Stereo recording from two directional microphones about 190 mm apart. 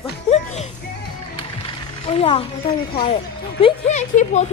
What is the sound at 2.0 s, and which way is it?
A woman's voice, 30° left (ahead or behind).